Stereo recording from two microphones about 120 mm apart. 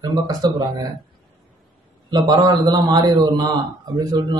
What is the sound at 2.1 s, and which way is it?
Speech, 35° right (ahead or behind).